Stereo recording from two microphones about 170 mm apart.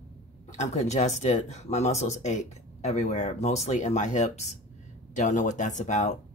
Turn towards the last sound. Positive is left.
turn(degrees=45)  # may be behind; listen again after turning